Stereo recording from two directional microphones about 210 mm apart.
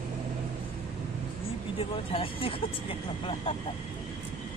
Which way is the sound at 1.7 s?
25° left (ahead or behind).